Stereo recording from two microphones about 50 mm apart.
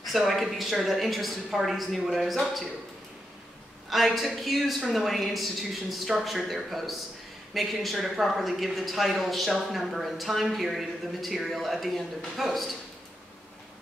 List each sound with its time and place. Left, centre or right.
0.0 s a man's voice: centre
3.9 s a man's voice: centre